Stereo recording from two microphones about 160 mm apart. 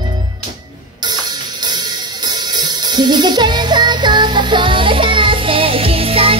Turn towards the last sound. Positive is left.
turn(degrees=-35)  # may be behind; listen again after turning